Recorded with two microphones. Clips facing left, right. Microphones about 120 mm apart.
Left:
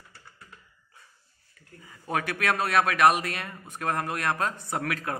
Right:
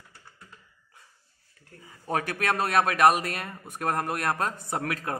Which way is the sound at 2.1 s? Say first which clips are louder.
Even; 40° right (ahead or behind).